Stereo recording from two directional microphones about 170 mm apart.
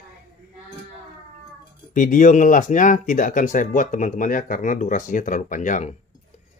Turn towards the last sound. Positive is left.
turn(degrees=45)  # may be behind; listen again after turning